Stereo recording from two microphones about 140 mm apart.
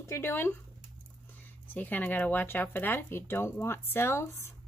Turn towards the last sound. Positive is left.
turn(degrees=15)  # may be behind; listen again after turning